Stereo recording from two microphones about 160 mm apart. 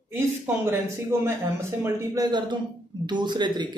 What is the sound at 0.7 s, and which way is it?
Speech, 15° right (ahead or behind).